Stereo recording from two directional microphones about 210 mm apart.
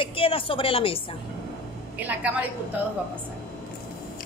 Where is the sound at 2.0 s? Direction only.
10° right (ahead or behind).